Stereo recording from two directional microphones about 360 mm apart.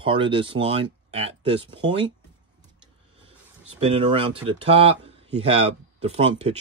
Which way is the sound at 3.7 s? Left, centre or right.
Centre.